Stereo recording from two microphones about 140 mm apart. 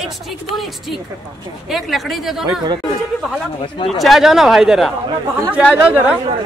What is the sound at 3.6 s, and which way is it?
Speech, 35° left (ahead or behind).